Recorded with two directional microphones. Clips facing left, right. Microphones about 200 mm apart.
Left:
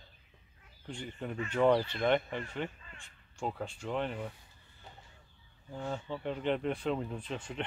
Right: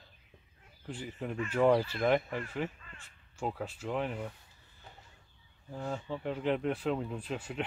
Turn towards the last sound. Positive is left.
turn(degrees=-5)  # may be behind; listen again after turning